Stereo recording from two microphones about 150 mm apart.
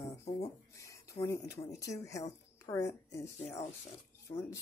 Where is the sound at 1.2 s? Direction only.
20° left (ahead or behind).